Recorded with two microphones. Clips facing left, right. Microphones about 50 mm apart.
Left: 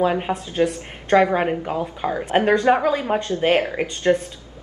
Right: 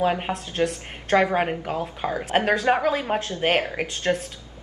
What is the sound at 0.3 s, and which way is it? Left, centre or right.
Speech, centre.